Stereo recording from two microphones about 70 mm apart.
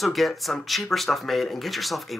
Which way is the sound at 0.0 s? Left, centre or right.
Centre.